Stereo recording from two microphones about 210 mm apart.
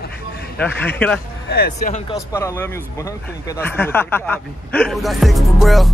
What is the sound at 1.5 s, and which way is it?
Speech, 45° left (ahead or behind).